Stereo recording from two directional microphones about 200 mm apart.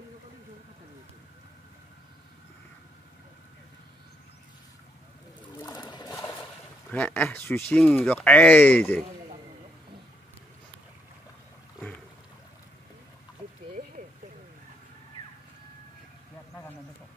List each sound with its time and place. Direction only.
5.6 s trickle: 20° left (ahead or behind)
6.9 s speech: 5° left (ahead or behind)